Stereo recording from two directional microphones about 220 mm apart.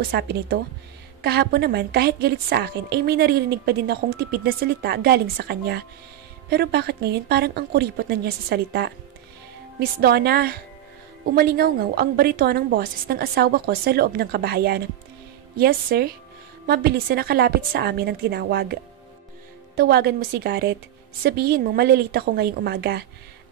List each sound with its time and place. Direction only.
0.0 s a woman's voice: 45° right (ahead or behind)
19.8 s a woman's voice: 45° right (ahead or behind)